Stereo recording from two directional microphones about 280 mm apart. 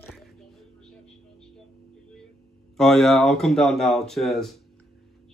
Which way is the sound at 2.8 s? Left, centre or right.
Centre.